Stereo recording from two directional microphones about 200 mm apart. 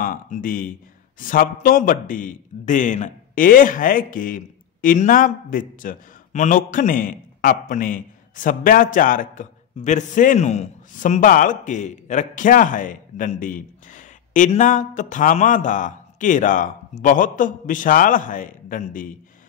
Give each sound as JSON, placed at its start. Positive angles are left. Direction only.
{"t": 0.0, "sound": "a man's voice", "side_deg": 45}